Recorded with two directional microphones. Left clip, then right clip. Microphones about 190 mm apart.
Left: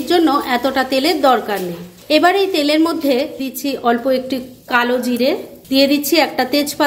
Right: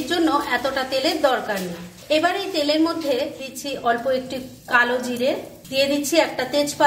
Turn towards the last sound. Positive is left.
turn(degrees=45)  # may be behind; listen again after turning